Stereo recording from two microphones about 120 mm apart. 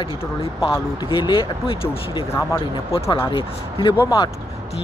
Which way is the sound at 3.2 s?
40° left (ahead or behind).